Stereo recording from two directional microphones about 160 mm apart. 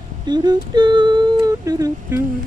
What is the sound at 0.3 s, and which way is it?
Humming, 25° right (ahead or behind).